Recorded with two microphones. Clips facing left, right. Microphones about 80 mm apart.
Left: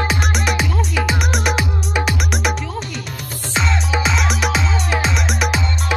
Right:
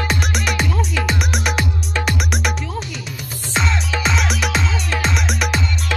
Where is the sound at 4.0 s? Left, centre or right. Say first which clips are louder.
Right 1 dB; centre.